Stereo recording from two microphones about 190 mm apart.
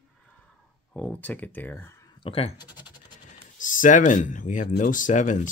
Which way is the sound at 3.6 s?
45° left (ahead or behind).